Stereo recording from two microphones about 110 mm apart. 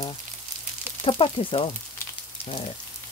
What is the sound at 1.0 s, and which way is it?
Speech, 55° left (ahead or behind).